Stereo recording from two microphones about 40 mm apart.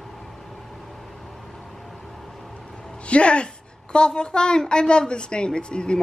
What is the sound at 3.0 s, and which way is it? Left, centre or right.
A woman's voice, left.